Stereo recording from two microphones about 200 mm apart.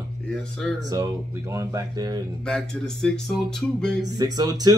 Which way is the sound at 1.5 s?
20° right (ahead or behind).